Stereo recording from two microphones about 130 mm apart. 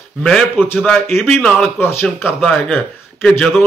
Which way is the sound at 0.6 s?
15° left (ahead or behind).